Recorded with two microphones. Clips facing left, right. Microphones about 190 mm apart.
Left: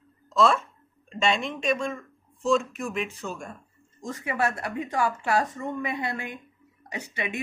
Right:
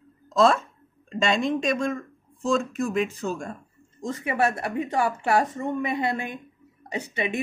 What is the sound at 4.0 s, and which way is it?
Speech, 25° right (ahead or behind).